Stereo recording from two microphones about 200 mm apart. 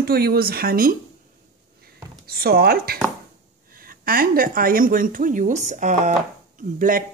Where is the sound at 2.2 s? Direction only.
50° right (ahead or behind).